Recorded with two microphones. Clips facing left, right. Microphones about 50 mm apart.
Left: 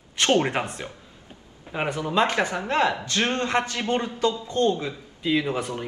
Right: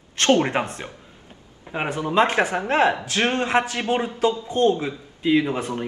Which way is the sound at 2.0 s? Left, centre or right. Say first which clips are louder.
Right 4 dB; right.